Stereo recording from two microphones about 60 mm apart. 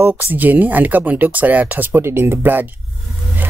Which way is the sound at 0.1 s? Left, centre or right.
Right.